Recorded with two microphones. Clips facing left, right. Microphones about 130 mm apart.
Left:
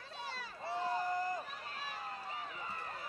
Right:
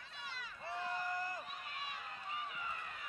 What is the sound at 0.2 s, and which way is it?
Run, 35° left (ahead or behind).